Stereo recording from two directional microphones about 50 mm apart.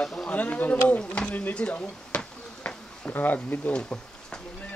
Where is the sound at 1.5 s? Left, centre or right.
Left.